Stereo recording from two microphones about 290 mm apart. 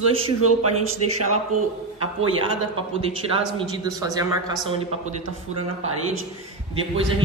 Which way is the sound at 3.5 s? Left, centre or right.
Centre.